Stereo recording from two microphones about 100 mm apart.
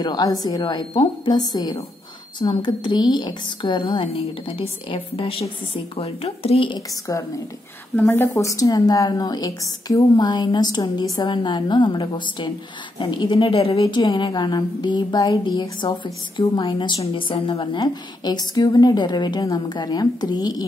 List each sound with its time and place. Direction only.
0.0 s a woman's voice: 45° left (ahead or behind); by 5.5 s 65° left (ahead or behind)
5.9 s a woman's voice: 75° left (ahead or behind)
7.1 s speech: 35° left (ahead or behind)
7.9 s a woman's voice: 25° left (ahead or behind); by 13.7 s 70° left (ahead or behind)
13.7 s a woman's voice: 45° left (ahead or behind)
17.0 s a woman's voice: 65° left (ahead or behind); by 20.6 s 40° left (ahead or behind)